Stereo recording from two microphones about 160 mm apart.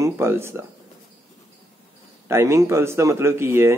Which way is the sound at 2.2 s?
15° right (ahead or behind).